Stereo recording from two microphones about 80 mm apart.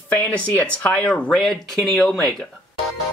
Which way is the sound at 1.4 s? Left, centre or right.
Centre.